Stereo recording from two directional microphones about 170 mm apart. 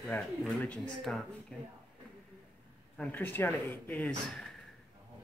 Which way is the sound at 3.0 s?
10° left (ahead or behind).